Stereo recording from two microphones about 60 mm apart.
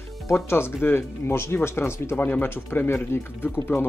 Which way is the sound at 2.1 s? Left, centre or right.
Left.